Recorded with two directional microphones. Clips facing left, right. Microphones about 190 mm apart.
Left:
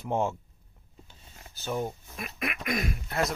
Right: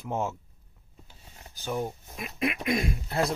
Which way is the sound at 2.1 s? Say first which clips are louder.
Right 5 dB; 25° right (ahead or behind).